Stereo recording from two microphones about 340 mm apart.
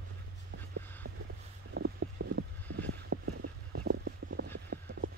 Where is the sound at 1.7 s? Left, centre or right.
Right.